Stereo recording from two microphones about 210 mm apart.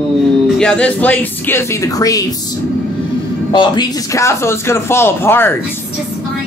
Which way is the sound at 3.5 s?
20° left (ahead or behind).